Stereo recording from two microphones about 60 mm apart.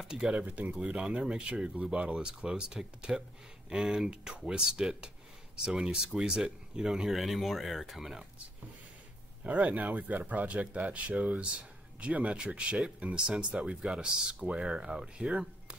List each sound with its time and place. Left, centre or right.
0.0 s speech: centre
9.4 s speech: right